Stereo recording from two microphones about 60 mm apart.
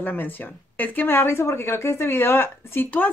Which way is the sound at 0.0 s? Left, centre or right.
Left.